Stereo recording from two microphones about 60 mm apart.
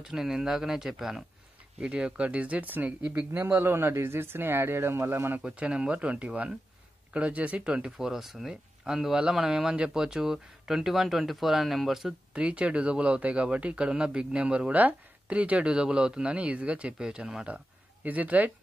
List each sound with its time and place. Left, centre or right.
0.0 s speech: centre; by 3.2 s right
3.5 s speech: right
5.4 s speech: centre
8.1 s speech: centre
12.4 s speech: right
18.0 s speech: right